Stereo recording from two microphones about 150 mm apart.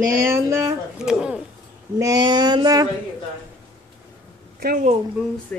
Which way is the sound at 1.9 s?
25° right (ahead or behind).